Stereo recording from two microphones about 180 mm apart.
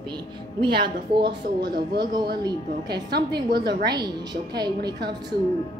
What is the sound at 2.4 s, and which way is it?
Speech, 25° right (ahead or behind).